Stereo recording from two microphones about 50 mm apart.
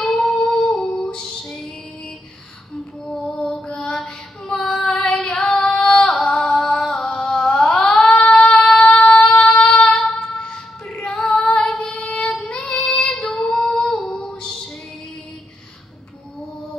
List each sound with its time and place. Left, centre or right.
0.0 s a sound: centre
0.4 s humming: centre
3.1 s female singing: centre
8.3 s child singing: left
9.8 s child singing: centre
10.9 s female singing: centre
13.9 s music: centre